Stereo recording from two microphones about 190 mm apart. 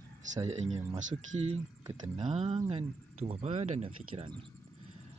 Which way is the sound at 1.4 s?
30° right (ahead or behind).